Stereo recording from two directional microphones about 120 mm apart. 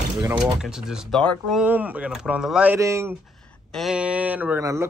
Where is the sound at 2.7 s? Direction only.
25° right (ahead or behind).